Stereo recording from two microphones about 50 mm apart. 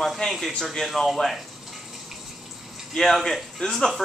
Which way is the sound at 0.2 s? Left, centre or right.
Centre.